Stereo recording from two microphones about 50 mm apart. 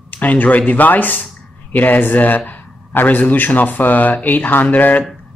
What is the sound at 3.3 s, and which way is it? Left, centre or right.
Speech, left.